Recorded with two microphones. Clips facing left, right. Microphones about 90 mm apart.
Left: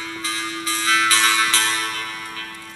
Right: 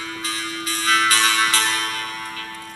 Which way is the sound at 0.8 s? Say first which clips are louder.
Right 1 dB; 40° right (ahead or behind).